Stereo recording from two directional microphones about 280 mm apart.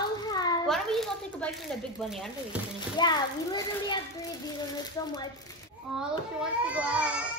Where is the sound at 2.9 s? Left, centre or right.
Centre.